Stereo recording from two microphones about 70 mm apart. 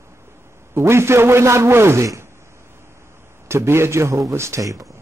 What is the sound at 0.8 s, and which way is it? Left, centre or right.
A man's voice, right.